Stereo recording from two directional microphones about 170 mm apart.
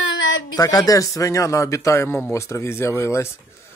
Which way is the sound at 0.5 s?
20° left (ahead or behind).